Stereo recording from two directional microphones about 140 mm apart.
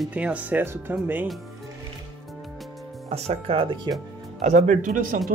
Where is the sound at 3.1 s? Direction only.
45° right (ahead or behind).